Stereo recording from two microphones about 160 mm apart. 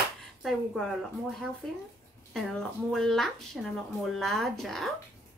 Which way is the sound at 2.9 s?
Centre (ahead or behind).